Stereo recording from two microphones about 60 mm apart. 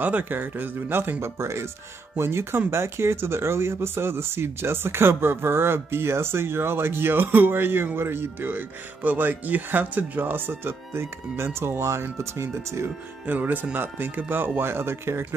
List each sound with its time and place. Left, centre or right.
0.0 s speech: right
13.2 s speech: right